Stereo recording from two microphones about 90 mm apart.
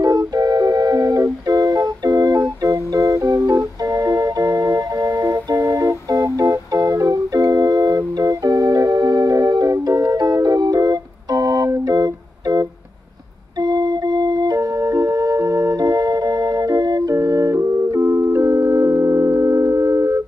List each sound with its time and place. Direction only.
0.0 s music: 40° right (ahead or behind)
11.7 s organ: 40° right (ahead or behind)
13.6 s music: 45° right (ahead or behind)